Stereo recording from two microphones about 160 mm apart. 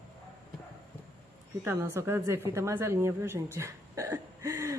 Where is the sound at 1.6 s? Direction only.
15° right (ahead or behind).